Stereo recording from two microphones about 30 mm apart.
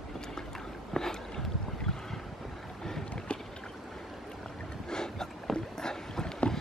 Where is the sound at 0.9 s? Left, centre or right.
Centre.